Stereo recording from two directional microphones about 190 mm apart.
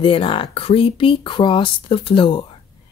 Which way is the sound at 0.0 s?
30° left (ahead or behind).